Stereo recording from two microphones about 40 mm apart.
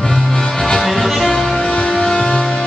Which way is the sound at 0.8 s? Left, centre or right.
Centre.